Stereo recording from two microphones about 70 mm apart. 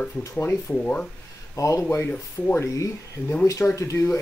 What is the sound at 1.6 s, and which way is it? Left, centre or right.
Speech, left.